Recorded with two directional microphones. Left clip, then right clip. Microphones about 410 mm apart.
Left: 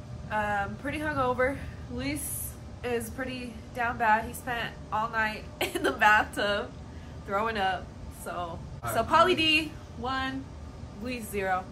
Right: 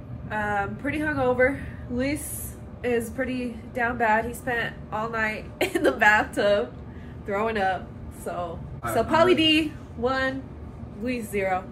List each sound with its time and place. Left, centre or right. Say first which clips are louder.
0.3 s a woman's voice: right 2 dB; centre
2.8 s a woman's voice: right 6 dB; centre